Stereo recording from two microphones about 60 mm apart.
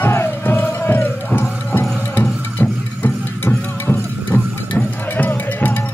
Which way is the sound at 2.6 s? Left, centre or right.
Left.